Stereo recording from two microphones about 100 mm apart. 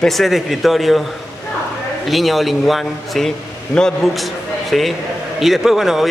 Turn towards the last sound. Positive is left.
turn(degrees=-5)  # may be behind; listen again after turning